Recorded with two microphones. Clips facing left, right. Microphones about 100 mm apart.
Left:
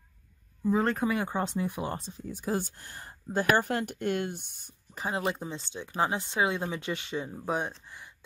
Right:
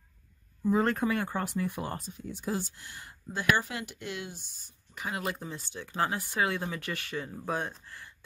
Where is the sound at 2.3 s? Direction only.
45° left (ahead or behind).